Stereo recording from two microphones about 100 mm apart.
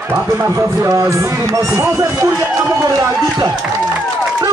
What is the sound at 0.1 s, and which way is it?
Speech, 25° right (ahead or behind).